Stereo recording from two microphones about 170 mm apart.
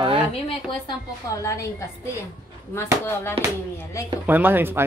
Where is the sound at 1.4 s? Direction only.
15° left (ahead or behind).